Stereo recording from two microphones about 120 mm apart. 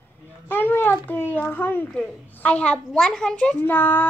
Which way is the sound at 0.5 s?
15° left (ahead or behind).